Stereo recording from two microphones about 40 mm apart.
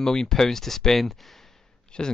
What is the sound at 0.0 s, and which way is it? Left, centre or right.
Speech, centre.